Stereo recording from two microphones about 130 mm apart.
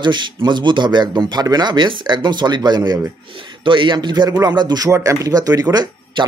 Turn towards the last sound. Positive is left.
turn(degrees=-35)  # may be behind; listen again after turning